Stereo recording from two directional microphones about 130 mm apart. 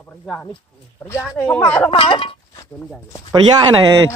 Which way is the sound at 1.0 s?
20° left (ahead or behind).